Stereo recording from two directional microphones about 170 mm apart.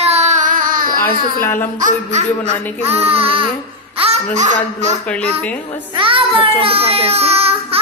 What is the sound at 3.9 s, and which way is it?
Speech, 35° right (ahead or behind).